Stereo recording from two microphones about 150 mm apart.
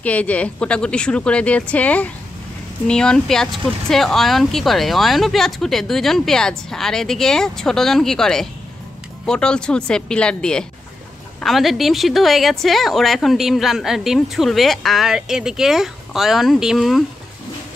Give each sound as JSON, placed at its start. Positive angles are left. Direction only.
{"t": 0.0, "sound": "speech", "side_deg": 10}